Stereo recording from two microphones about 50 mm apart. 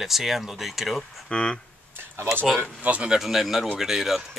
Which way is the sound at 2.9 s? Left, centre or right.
Right.